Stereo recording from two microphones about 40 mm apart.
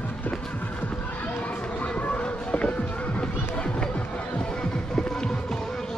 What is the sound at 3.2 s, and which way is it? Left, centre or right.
Music, left.